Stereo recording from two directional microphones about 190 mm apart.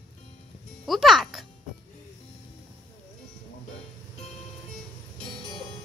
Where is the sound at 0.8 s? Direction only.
Centre (ahead or behind).